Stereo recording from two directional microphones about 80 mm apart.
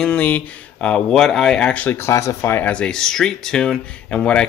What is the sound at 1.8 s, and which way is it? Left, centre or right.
Speech, left.